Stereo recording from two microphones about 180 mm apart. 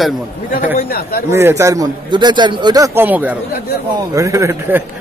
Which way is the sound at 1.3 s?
15° right (ahead or behind).